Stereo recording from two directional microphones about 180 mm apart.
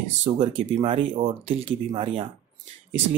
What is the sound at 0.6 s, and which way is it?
Speech, 35° right (ahead or behind).